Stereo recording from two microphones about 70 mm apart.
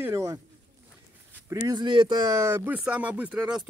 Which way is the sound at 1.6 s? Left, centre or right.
Right.